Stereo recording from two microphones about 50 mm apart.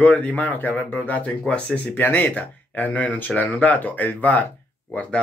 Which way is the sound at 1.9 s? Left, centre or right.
Left.